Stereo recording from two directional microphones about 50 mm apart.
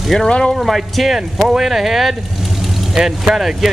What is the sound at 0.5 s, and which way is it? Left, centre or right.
Speech, centre.